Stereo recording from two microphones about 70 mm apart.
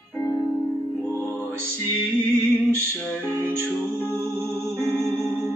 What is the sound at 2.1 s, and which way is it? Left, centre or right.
Music, right.